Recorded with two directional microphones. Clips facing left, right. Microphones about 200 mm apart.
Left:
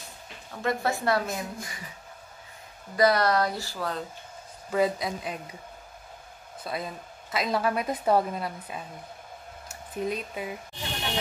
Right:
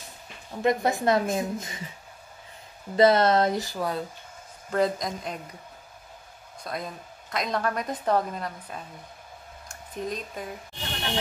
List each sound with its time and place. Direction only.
0.5 s speech: 20° right (ahead or behind)
3.0 s speech: 25° right (ahead or behind)
4.6 s a woman's voice: 5° left (ahead or behind)
6.6 s a woman's voice: 5° left (ahead or behind)